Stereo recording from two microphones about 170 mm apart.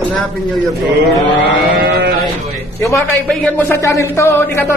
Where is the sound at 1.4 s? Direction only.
80° right.